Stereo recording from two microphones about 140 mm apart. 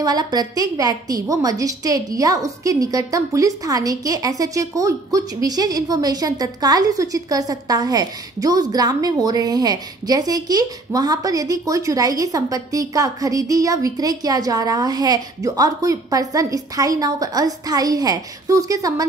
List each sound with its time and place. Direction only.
0.0 s a woman's voice: 30° right (ahead or behind)